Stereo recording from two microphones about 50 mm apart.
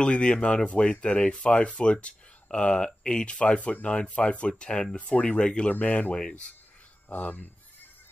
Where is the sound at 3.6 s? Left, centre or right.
Left.